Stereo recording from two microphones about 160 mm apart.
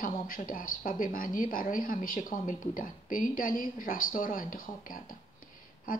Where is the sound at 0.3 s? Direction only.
60° left (ahead or behind).